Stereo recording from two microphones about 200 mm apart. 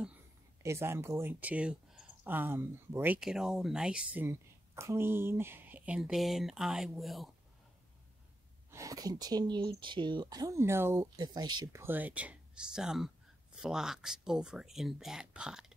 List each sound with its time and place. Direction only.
0.6 s speech: 15° right (ahead or behind)
8.6 s speech: 15° right (ahead or behind)